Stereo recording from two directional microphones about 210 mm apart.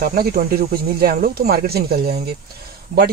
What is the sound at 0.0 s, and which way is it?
Speech, 45° right (ahead or behind).